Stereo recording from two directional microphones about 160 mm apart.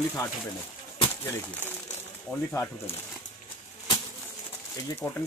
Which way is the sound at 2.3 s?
10° left (ahead or behind).